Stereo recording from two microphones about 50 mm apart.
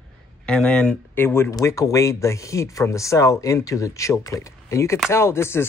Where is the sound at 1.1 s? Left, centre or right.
Left.